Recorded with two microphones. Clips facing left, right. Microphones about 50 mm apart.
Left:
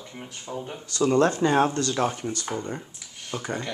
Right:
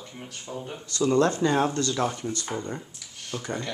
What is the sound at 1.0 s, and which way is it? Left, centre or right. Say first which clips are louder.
Speech: left 1 dB; left.